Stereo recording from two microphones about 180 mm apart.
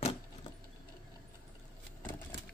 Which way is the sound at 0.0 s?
35° left (ahead or behind).